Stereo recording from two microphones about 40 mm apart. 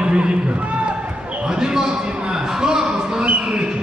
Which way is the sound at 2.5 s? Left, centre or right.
Centre.